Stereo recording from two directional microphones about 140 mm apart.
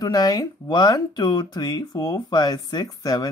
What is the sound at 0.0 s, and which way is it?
Speech, 30° left (ahead or behind).